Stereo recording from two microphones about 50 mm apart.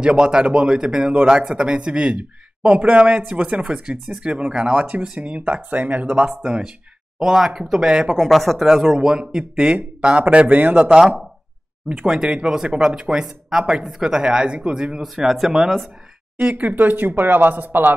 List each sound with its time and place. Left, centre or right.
0.0 s speech: centre
8.3 s speech: centre
8.8 s speech: centre
10.9 s speech: centre
16.3 s speech: right